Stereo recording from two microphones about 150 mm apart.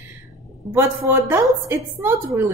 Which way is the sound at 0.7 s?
15° right (ahead or behind).